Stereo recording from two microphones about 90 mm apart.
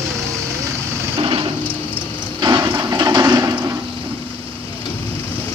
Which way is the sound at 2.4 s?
50° right (ahead or behind).